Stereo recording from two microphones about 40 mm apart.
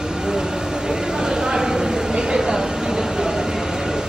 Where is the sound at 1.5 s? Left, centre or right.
Centre.